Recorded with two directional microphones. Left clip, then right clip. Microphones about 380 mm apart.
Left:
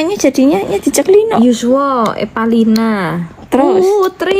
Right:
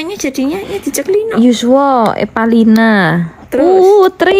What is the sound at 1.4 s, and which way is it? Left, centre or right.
Speech, right.